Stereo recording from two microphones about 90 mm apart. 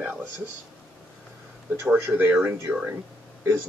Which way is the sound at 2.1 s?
15° right (ahead or behind).